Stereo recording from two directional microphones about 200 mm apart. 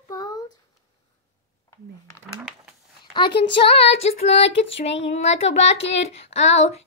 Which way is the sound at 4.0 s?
30° left (ahead or behind).